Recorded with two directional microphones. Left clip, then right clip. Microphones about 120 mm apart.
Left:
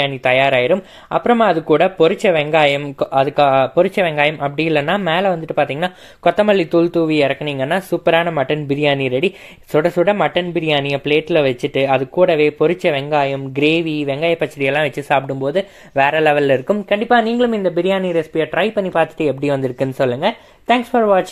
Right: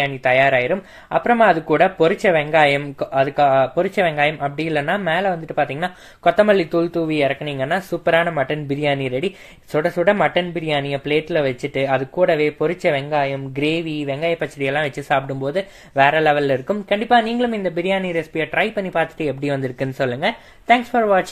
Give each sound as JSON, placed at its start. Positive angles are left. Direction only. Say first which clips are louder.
{"t": 0.0, "sound": "speech", "louder": "left 1 dB", "side_deg": 40}